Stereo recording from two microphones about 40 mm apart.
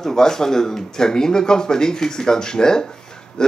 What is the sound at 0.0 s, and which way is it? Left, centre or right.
Speech, centre.